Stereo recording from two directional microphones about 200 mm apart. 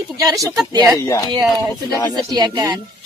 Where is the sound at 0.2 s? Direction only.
15° right (ahead or behind).